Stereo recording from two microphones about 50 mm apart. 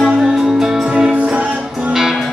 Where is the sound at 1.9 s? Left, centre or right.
Centre.